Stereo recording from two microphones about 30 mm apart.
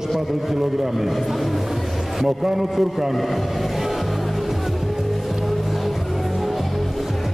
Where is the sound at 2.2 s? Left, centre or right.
Centre.